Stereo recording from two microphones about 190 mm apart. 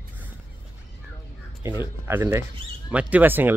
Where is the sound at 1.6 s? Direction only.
15° right (ahead or behind).